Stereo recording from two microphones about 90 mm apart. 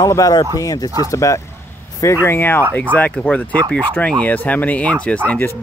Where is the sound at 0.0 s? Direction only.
40° left (ahead or behind).